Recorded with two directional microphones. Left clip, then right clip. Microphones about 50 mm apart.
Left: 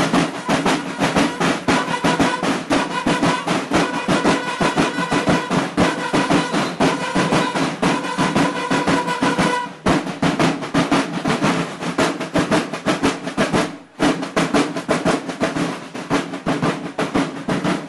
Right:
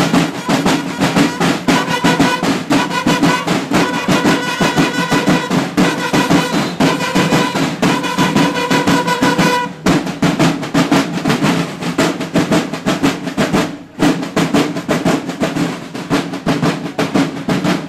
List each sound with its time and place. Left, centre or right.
0.0 s music: centre
14.6 s percussion: centre